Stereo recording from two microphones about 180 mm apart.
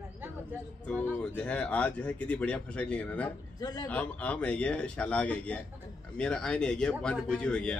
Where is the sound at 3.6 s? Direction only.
20° left (ahead or behind).